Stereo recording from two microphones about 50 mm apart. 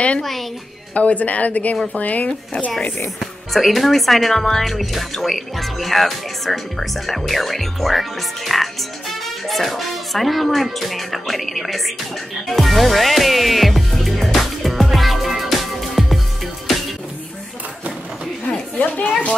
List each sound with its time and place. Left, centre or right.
0.9 s speech: left
3.2 s speech: centre
12.4 s music: centre
18.4 s a sound: left